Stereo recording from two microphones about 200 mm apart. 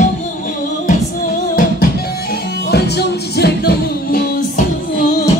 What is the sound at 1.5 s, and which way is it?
Music, 50° left (ahead or behind).